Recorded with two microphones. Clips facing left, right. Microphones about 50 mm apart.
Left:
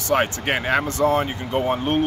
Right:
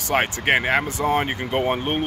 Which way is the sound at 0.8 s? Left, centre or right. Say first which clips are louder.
Left 3 dB; centre.